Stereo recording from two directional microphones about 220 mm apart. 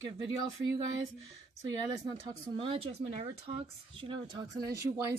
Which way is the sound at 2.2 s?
25° right (ahead or behind).